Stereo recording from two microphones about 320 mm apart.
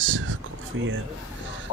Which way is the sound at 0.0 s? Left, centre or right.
Right.